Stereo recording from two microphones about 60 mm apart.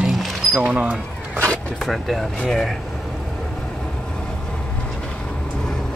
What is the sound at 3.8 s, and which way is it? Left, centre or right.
Vehicle, centre.